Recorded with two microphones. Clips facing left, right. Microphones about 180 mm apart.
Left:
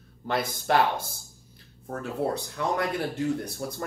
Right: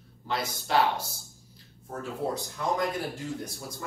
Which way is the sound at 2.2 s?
65° left (ahead or behind).